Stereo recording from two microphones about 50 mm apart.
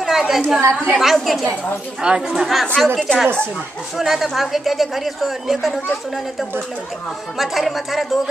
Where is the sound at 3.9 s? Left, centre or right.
Centre.